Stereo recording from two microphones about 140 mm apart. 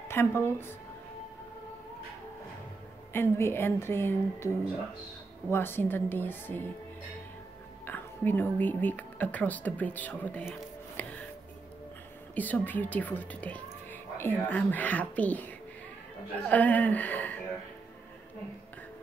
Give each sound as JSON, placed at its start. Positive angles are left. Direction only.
{"t": 0.1, "sound": "speech", "side_deg": 15}
{"t": 3.1, "sound": "speech", "side_deg": 15}
{"t": 5.5, "sound": "speech", "side_deg": 15}
{"t": 7.8, "sound": "a woman's voice", "side_deg": 15}
{"t": 12.4, "sound": "speech", "side_deg": 10}